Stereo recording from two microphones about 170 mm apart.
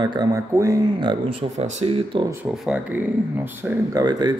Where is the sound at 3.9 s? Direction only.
25° right (ahead or behind).